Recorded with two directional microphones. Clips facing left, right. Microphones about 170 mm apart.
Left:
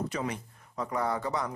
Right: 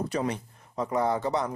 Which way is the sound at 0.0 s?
35° right (ahead or behind).